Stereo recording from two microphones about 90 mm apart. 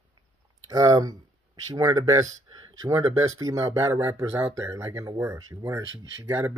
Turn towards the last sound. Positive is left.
turn(degrees=-30)  # may be behind; listen again after turning